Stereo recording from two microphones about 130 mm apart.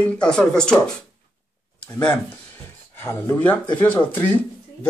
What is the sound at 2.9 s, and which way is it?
Speech, 20° left (ahead or behind).